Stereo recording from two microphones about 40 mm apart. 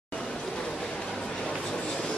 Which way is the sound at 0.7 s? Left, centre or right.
Centre.